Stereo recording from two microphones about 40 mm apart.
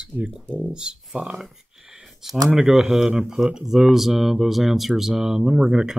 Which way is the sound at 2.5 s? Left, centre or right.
Centre.